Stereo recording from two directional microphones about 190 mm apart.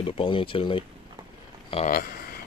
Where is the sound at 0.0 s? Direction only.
25° left (ahead or behind).